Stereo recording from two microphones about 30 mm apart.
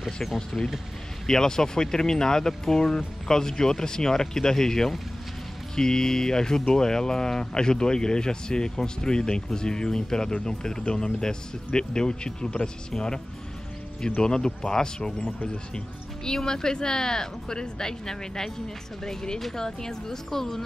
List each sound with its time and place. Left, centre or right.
0.0 s speech: centre
1.2 s speech: centre
14.2 s speech: left